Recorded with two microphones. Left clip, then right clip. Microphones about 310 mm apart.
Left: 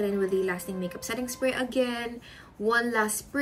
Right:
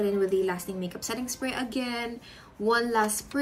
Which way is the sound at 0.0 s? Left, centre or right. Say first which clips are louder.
Right 1 dB; centre.